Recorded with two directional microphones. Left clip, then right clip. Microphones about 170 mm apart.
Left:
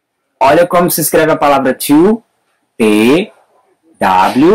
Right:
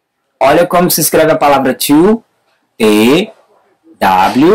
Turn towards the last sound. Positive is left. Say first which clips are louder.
# even
turn(degrees=-15)  # may be behind; listen again after turning